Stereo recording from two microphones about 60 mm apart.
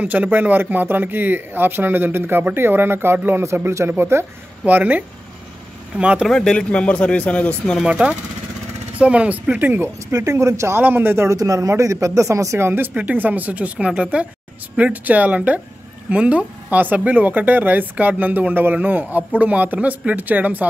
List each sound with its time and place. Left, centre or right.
0.0 s a man's voice: right
4.6 s speech: right
6.2 s speech: centre
7.9 s speech: centre
10.1 s speech: right
10.8 s a man's voice: right
11.2 s speech: right
12.6 s a man's voice: right
12.9 s speech: right